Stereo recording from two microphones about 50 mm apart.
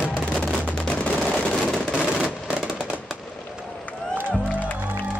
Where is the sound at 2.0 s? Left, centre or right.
Centre.